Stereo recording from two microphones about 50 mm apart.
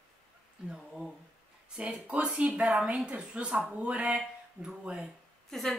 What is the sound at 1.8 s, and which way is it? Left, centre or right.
A woman's voice, right.